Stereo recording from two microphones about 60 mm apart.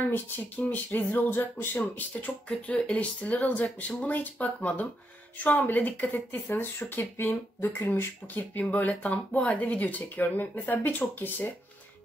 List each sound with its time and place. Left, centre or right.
0.0 s speech: left
1.8 s speech: left